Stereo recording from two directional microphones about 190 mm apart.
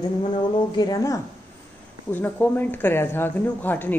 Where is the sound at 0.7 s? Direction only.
20° left (ahead or behind).